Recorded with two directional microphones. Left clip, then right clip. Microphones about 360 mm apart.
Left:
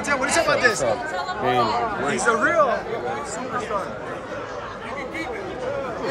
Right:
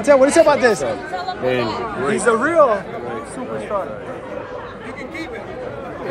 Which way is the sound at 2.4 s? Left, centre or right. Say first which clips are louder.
Right 5 dB; centre.